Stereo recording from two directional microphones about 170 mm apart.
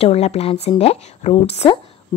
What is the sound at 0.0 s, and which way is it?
Speech, 40° left (ahead or behind).